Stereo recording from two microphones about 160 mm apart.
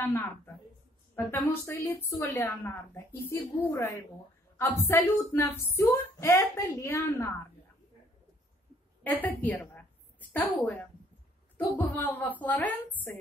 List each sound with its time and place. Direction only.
0.0 s a woman's voice: 15° left (ahead or behind)
9.0 s a woman's voice: 10° left (ahead or behind)